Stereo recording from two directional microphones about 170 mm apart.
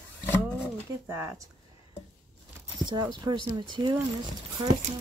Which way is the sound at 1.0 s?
15° right (ahead or behind).